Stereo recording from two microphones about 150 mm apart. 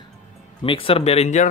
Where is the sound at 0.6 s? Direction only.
35° left (ahead or behind).